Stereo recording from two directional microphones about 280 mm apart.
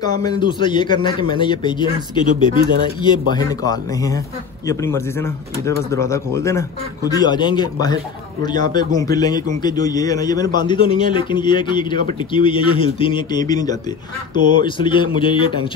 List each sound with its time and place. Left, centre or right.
0.0 s a man's voice: centre